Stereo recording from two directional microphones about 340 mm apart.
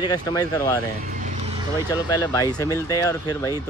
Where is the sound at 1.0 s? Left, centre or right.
Right.